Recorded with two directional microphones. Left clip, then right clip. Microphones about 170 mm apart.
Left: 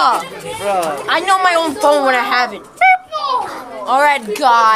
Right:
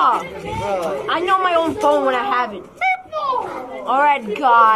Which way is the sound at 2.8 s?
60° left (ahead or behind).